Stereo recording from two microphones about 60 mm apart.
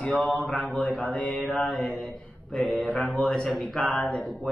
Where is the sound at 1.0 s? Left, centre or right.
Centre.